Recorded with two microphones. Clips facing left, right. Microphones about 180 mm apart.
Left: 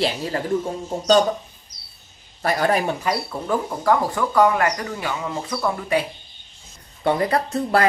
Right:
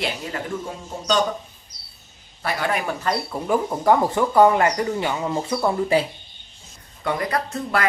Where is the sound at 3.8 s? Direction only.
25° right (ahead or behind).